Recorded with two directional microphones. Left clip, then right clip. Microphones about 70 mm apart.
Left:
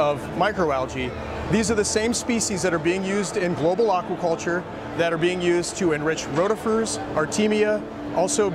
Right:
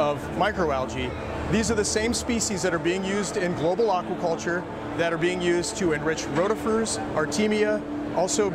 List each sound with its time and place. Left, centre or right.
0.0 s speech: left